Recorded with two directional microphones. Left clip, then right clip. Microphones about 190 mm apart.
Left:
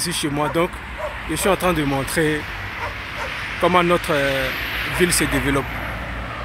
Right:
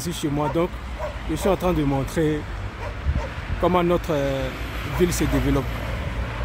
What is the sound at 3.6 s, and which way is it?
Speech, 10° right (ahead or behind).